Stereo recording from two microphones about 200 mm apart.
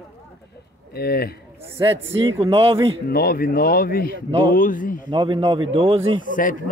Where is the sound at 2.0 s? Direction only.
70° right (ahead or behind).